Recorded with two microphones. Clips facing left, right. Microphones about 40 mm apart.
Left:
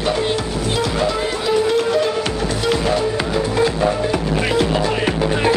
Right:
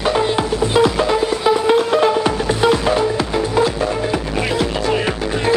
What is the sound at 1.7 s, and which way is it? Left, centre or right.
Music, right.